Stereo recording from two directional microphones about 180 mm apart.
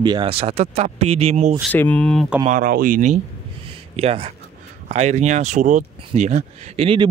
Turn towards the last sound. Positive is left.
turn(degrees=-30)  # may be behind; listen again after turning